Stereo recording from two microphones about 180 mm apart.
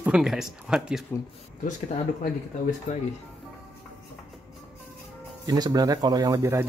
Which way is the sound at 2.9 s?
40° left (ahead or behind).